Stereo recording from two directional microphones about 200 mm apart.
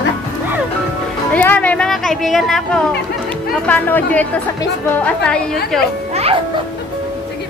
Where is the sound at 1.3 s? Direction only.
5° left (ahead or behind).